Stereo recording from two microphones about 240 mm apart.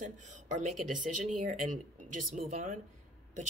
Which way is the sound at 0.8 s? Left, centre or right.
Right.